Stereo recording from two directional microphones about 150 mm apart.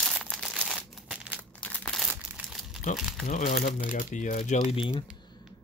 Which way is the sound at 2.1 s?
5° right (ahead or behind).